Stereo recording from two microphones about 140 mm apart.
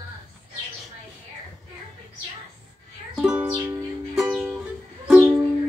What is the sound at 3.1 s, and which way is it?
Music, 10° right (ahead or behind).